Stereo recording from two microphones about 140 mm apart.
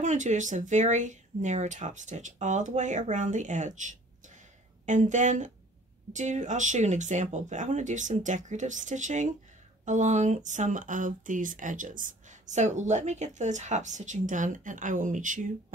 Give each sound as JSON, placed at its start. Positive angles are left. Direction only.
{"t": 0.0, "sound": "speech", "side_deg": -60}